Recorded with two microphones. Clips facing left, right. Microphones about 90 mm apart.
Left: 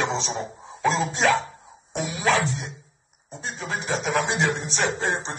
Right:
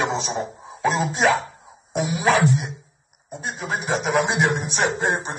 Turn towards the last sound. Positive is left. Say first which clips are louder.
# right 3 dB
turn(degrees=-15)  # may be behind; listen again after turning